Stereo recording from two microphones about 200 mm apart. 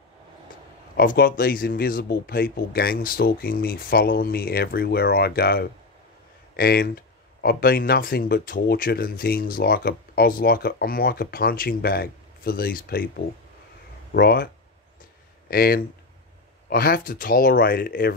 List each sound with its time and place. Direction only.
0.9 s speech: 50° left (ahead or behind)
15.5 s speech: 50° left (ahead or behind)